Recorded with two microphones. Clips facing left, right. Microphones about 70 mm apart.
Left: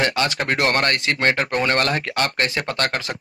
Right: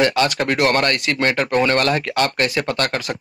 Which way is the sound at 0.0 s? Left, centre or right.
Left.